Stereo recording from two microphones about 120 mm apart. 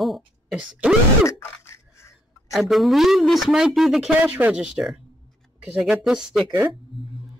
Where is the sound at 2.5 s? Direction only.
Centre (ahead or behind).